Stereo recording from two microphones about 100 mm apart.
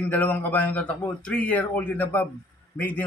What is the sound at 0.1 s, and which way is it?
Speech, 20° left (ahead or behind).